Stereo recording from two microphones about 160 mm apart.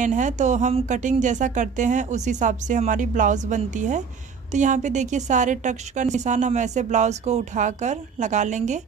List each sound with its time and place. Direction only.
0.0 s a woman's voice: 50° right (ahead or behind)